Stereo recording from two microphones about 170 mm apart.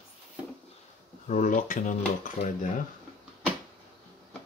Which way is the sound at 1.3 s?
45° left (ahead or behind).